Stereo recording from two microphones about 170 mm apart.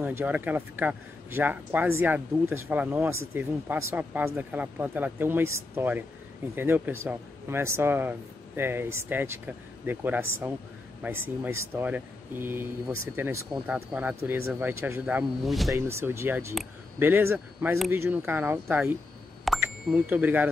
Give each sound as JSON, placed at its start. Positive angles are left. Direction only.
{"t": 0.0, "sound": "speech", "side_deg": -10}
{"t": 15.7, "sound": "speech", "side_deg": -15}